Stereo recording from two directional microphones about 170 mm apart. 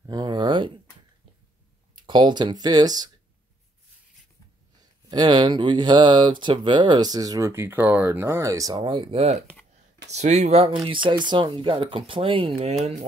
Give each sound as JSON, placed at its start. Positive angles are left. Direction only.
{"t": 0.0, "sound": "a sound", "side_deg": -25}
{"t": 2.0, "sound": "speech", "side_deg": -25}
{"t": 5.1, "sound": "speech", "side_deg": -25}